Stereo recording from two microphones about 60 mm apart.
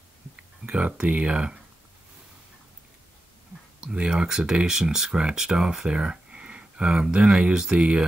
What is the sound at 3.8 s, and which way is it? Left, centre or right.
Speech, centre.